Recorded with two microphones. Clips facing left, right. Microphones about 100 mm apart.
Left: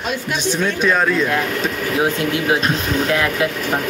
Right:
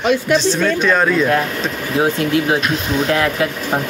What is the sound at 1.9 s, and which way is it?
Speech, 30° right (ahead or behind).